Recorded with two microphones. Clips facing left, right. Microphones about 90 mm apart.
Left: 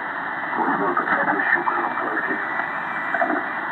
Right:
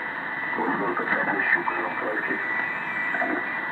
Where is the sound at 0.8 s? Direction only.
35° left (ahead or behind).